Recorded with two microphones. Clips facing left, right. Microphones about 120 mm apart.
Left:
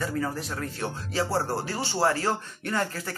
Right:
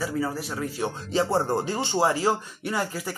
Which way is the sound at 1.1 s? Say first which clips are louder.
Right 4 dB; 20° right (ahead or behind).